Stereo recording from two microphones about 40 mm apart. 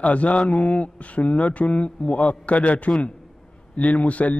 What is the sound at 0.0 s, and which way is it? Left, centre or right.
A man's voice, left.